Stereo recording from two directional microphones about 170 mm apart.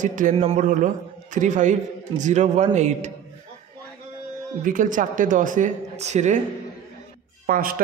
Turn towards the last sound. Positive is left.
turn(degrees=-55)  # may be behind; listen again after turning